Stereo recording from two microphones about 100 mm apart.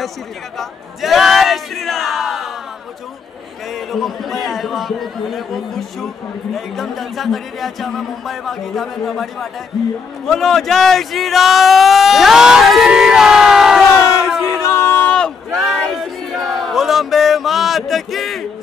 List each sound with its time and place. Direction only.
0.6 s speech: centre (ahead or behind)
3.7 s speech: centre (ahead or behind)
14.6 s a sound: 25° left (ahead or behind); by 18.4 s centre (ahead or behind)